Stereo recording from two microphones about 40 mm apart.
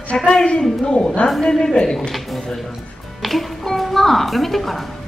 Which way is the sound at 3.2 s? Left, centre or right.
Centre.